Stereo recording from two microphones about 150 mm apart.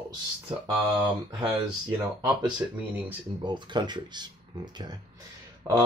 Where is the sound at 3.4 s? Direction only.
30° right (ahead or behind).